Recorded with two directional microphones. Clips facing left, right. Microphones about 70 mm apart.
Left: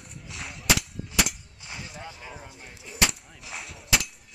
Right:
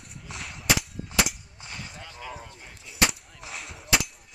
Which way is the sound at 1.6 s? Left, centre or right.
Centre.